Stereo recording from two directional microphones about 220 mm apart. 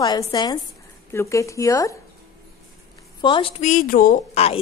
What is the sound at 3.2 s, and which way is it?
A woman's voice, 20° left (ahead or behind).